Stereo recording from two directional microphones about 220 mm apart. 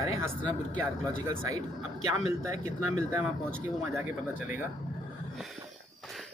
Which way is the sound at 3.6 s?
10° right (ahead or behind).